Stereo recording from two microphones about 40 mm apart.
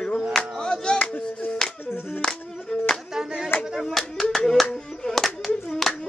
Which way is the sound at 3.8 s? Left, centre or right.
Centre.